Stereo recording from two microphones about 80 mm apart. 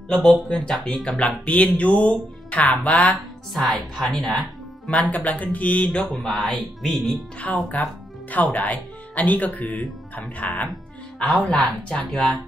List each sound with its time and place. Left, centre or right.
0.1 s speech: centre
3.5 s speech: centre
4.2 s music: centre
5.1 s speech: centre
6.0 s speech: centre
7.5 s speech: centre